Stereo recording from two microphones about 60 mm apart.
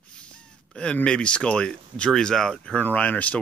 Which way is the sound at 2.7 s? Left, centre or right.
Left.